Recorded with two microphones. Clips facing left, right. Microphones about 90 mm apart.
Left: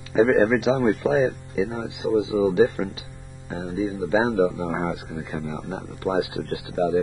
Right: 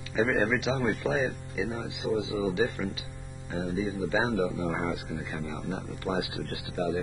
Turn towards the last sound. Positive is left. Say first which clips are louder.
# left 8 dB
turn(degrees=40)  # may be behind; listen again after turning